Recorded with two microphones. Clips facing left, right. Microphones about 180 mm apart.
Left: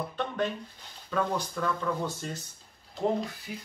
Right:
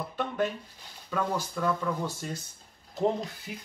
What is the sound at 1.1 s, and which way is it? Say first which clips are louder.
Speech: left 1 dB; 10° right (ahead or behind).